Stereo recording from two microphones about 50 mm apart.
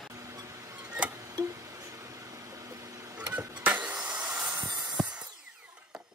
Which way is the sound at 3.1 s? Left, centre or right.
Right.